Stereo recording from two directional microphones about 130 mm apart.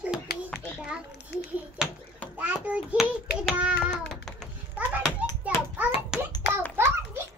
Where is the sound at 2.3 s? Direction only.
10° right (ahead or behind).